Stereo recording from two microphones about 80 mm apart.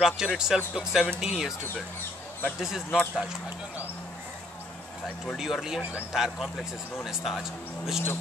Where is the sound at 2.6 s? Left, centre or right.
Centre.